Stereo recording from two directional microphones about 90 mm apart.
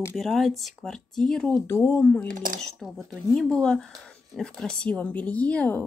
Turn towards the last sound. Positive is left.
turn(degrees=15)  # may be behind; listen again after turning